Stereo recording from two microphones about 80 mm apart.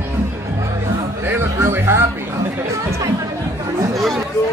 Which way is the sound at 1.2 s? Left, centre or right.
Right.